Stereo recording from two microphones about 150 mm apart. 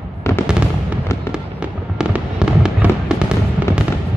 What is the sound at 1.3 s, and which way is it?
Fireworks, 5° right (ahead or behind).